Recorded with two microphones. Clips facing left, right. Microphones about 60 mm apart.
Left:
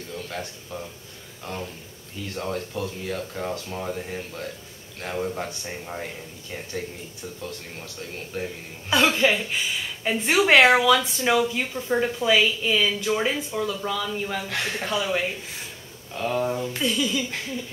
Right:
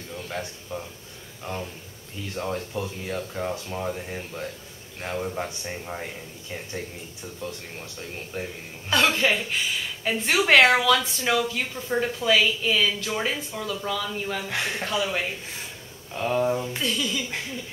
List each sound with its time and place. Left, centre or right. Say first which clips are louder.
0.1 s speech: right 1 dB; centre
1.4 s a man's voice: right 1 dB; centre
2.3 s a woman's voice: even; centre
8.9 s a woman's voice: left 2 dB; centre